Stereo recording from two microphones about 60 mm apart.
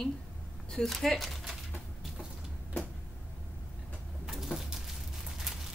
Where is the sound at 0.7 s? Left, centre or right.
Centre.